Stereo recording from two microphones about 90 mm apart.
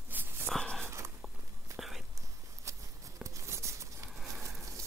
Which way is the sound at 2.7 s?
35° right (ahead or behind).